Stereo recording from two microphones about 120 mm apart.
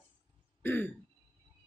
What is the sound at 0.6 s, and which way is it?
Throat clearing, 15° left (ahead or behind).